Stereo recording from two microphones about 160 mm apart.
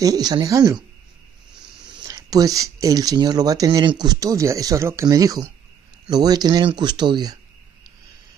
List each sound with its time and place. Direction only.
0.0 s speech: 25° right (ahead or behind)
1.9 s speech: 25° right (ahead or behind)